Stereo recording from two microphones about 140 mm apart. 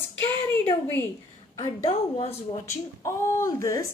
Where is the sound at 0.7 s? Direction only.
20° left (ahead or behind).